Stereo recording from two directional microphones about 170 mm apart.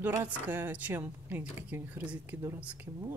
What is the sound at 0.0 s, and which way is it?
A woman's voice, 10° right (ahead or behind).